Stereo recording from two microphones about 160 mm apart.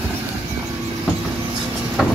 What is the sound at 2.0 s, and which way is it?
Vehicle, centre (ahead or behind).